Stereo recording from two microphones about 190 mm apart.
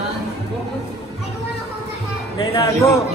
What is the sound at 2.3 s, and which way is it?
Speech, 20° left (ahead or behind).